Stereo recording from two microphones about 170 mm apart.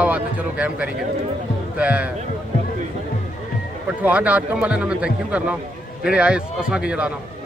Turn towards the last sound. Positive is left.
turn(degrees=-5)  # may be behind; listen again after turning